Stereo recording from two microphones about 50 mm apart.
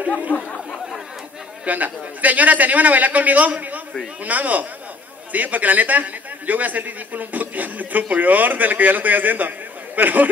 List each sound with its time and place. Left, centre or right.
0.3 s speech: left
1.7 s a man's voice: right